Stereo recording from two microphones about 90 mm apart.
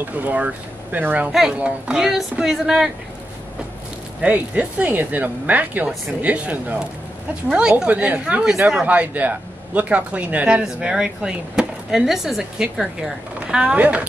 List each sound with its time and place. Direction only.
0.1 s speech: 15° right (ahead or behind)
4.2 s speech: 15° right (ahead or behind)